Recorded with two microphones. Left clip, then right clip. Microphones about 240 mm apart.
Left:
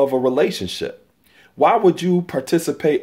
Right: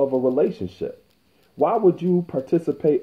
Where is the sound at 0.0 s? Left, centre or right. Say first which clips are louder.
Left 3 dB; left.